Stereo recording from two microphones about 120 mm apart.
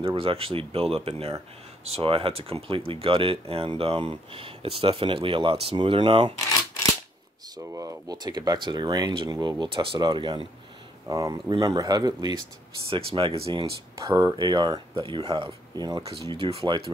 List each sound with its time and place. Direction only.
0.0 s speech: 50° right (ahead or behind)
7.5 s speech: 30° right (ahead or behind)
11.1 s speech: 30° right (ahead or behind); by 13.7 s 50° right (ahead or behind)
13.9 s speech: 30° right (ahead or behind)
16.3 s speech: 55° right (ahead or behind)